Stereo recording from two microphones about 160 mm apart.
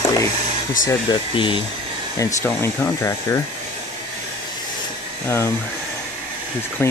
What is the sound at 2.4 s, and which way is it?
Speech, 15° left (ahead or behind).